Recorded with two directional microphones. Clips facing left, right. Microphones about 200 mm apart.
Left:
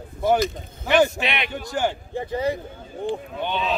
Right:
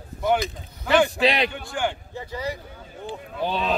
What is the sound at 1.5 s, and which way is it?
Speech, 40° left (ahead or behind).